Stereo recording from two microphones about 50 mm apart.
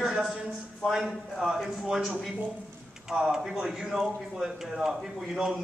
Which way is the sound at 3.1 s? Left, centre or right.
Centre.